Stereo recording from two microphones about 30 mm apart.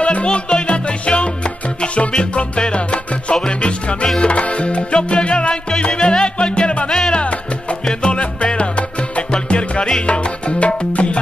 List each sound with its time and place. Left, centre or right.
0.0 s music: left
4.2 s music: left
6.9 s music: left
7.2 s music: left
10.0 s salsa music: left
10.9 s music: left